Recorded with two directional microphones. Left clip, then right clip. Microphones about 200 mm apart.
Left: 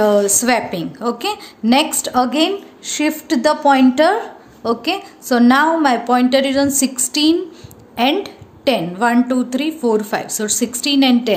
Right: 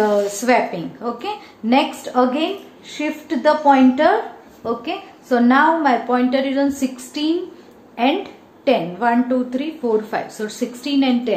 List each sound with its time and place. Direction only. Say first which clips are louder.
0.0 s a woman's voice: left 4 dB; 45° left (ahead or behind)